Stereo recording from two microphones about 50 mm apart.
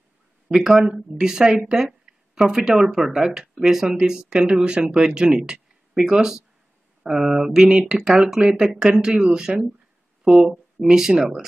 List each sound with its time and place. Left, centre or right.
0.5 s speech: centre
1.7 s a sound: centre
2.3 s speech: centre